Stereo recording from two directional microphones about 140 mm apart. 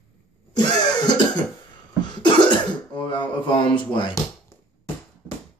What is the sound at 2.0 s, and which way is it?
Throat clearing, 35° left (ahead or behind).